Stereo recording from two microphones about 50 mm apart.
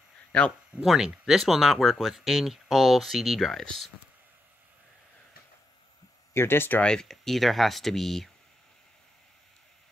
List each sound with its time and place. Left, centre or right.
0.8 s speech: centre
6.3 s speech: left
6.8 s speech: centre